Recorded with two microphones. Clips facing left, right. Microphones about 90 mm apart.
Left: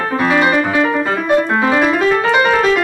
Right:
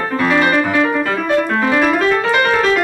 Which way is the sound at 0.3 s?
15° left (ahead or behind).